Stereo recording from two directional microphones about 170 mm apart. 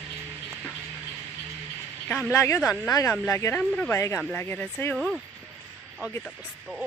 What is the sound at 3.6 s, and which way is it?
Speech, 5° left (ahead or behind).